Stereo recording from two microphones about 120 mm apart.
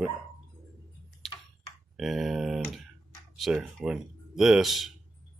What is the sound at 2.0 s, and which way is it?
Speech, centre (ahead or behind).